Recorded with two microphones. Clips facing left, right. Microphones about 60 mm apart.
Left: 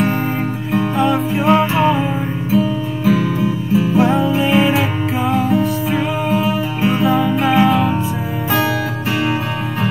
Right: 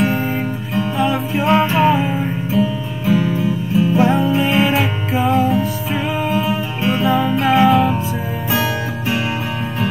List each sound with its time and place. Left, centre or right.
0.7 s music: centre